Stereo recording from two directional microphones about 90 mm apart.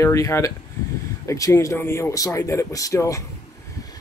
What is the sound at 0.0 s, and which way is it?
Speech, 35° left (ahead or behind).